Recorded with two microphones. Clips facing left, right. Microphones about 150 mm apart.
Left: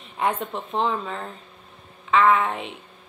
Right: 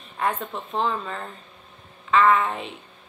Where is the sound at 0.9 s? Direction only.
15° left (ahead or behind).